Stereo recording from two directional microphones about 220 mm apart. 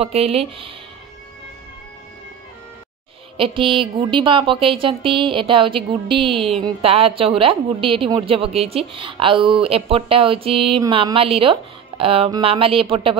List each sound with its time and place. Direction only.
0.0 s speech: 25° right (ahead or behind)
3.3 s speech: 25° right (ahead or behind)